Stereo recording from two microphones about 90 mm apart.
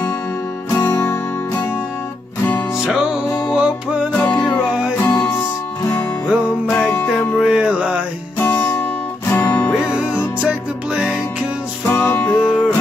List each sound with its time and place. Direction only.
0.7 s music: 20° left (ahead or behind)
2.8 s music: 5° right (ahead or behind)
4.1 s music: 15° left (ahead or behind)
6.8 s music: 20° left (ahead or behind)
7.1 s music: 10° right (ahead or behind)
8.4 s music: 20° left (ahead or behind)
11.9 s music: 25° left (ahead or behind)
12.4 s music: 5° right (ahead or behind)